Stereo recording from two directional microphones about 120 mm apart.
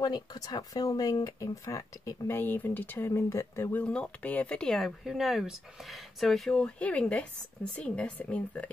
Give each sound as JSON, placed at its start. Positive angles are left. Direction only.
{"t": 0.0, "sound": "speech", "side_deg": 35}
{"t": 3.8, "sound": "speech", "side_deg": 10}